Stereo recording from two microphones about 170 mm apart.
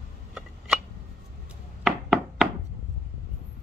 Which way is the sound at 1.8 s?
5° right (ahead or behind).